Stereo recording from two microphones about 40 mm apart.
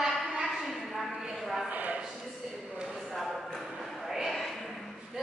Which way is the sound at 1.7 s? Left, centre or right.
Right.